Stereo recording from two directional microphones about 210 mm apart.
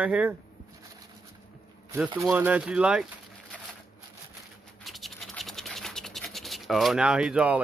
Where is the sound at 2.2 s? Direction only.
5° right (ahead or behind).